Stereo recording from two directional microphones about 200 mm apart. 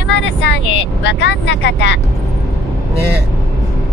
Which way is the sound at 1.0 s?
60° left (ahead or behind).